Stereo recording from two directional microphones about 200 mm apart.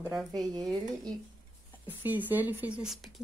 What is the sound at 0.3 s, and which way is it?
Speech, 20° right (ahead or behind).